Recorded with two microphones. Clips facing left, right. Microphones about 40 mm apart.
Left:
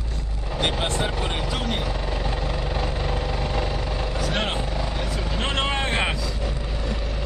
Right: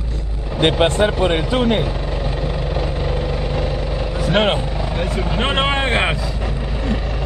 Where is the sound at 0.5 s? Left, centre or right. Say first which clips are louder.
Right 10 dB; right.